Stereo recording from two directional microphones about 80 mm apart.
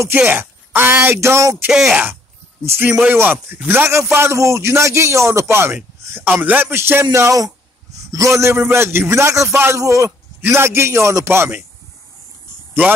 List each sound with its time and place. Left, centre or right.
0.2 s speech: right
1.7 s speech: centre
2.6 s a man's voice: right
2.9 s speech: centre
3.2 s a man's voice: right
6.0 s a sound: right
6.4 s a man's voice: right